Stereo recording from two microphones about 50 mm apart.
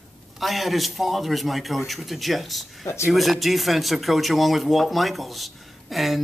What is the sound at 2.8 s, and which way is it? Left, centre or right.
Speech, left.